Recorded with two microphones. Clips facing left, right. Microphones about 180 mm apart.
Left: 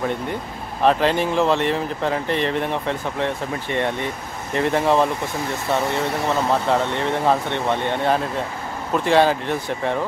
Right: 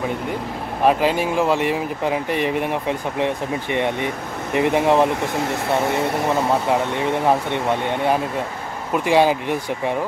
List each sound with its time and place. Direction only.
0.8 s speech: 10° right (ahead or behind)
6.2 s speech: 15° right (ahead or behind)